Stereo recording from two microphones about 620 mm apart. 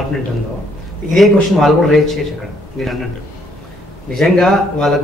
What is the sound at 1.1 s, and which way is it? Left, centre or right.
A man's voice, centre.